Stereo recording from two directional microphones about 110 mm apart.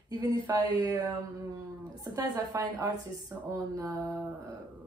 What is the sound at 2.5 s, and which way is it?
Speech, 25° right (ahead or behind).